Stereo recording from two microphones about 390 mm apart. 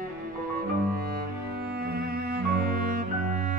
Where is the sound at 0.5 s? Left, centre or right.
Right.